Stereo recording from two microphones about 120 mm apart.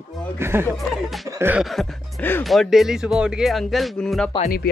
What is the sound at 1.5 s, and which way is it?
Speech, centre (ahead or behind).